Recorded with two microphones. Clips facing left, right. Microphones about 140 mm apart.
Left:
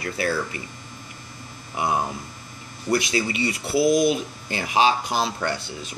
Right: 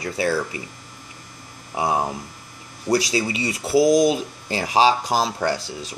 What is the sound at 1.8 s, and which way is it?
Speech, 30° right (ahead or behind).